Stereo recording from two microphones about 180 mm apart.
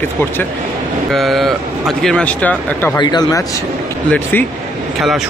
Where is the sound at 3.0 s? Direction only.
25° left (ahead or behind).